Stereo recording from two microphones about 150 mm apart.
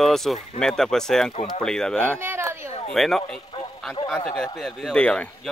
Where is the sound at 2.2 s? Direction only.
15° right (ahead or behind).